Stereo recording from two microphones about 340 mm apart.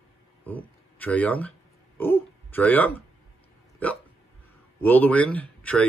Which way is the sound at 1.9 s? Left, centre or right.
Centre.